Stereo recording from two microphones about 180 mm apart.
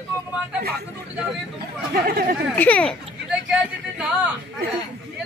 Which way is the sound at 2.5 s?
10° left (ahead or behind).